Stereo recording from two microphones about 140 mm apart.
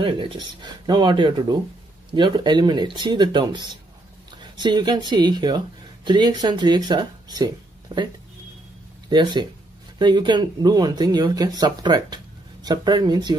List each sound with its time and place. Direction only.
0.0 s speech: 35° right (ahead or behind)
9.1 s speech: 30° right (ahead or behind)